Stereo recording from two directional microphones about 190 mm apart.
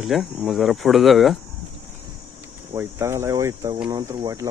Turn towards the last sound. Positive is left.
turn(degrees=-20)  # may be behind; listen again after turning